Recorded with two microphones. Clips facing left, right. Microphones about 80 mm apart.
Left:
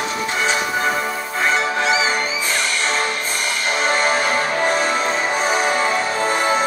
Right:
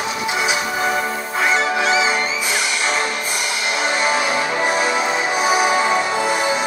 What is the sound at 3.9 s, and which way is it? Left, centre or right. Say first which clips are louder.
Music: even; left.